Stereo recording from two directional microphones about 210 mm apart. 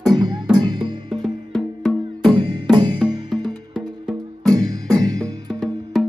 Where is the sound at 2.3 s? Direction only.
20° right (ahead or behind).